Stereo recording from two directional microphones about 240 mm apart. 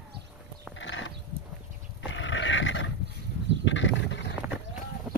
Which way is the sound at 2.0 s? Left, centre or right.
Left.